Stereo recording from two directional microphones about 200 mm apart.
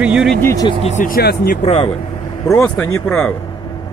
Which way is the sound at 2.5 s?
10° left (ahead or behind).